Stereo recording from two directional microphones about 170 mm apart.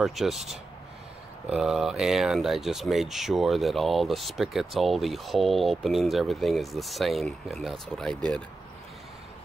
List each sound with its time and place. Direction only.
0.0 s speech: centre (ahead or behind)